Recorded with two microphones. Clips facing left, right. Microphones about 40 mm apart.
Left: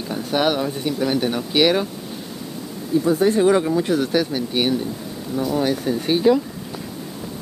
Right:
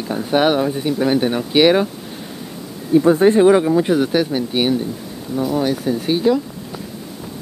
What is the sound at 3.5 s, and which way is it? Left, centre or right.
Speech, centre.